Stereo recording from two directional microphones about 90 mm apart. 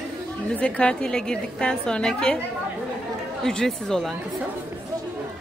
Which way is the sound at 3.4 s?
5° left (ahead or behind).